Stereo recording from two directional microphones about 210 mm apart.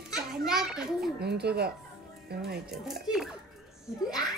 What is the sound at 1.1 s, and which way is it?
Speech, 50° right (ahead or behind).